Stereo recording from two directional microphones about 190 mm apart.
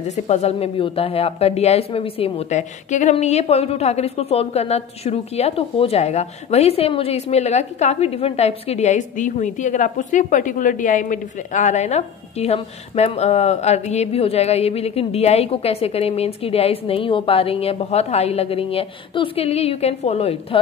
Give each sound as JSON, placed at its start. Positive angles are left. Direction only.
{"t": 0.1, "sound": "a woman's voice", "side_deg": 35}